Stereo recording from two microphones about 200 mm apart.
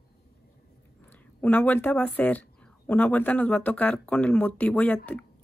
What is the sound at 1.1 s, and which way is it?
A woman's voice, 5° left (ahead or behind).